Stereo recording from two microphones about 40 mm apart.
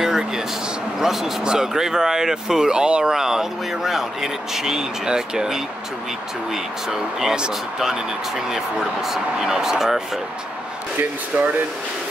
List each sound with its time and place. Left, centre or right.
0.0 s a sound: centre
0.9 s speech: centre
8.5 s speech: centre
11.3 s speech: right